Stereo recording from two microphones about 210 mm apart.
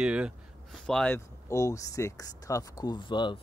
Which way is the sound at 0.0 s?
5° right (ahead or behind).